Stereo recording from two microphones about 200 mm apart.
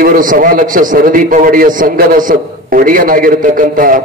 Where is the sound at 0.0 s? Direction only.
45° right (ahead or behind).